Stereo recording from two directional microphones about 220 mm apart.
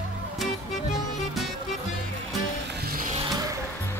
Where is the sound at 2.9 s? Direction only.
35° right (ahead or behind).